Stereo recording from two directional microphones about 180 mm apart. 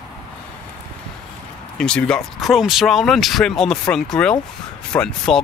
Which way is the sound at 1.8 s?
5° left (ahead or behind).